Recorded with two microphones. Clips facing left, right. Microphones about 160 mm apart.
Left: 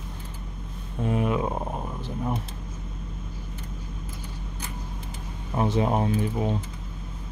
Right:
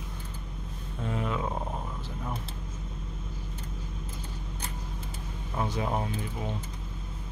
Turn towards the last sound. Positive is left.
turn(degrees=30)  # may be behind; listen again after turning